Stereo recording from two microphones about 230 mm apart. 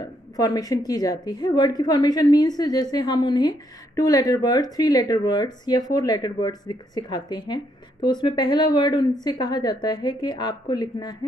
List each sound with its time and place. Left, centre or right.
0.0 s a woman's voice: centre